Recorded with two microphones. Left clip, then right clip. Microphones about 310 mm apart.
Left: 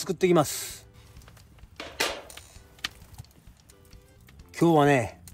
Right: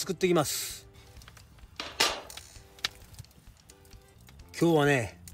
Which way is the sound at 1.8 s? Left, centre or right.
Centre.